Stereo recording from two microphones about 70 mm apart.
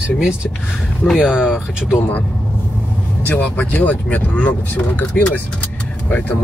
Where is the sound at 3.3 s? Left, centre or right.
Left.